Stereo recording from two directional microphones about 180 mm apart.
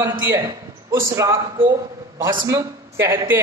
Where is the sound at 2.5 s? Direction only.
15° right (ahead or behind).